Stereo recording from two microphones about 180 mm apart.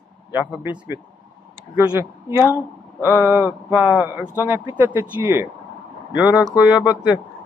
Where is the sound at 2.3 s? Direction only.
10° right (ahead or behind).